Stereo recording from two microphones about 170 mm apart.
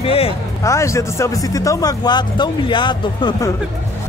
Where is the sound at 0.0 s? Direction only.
35° left (ahead or behind).